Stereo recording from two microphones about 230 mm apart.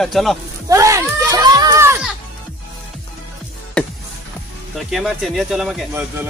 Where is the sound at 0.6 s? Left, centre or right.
Centre.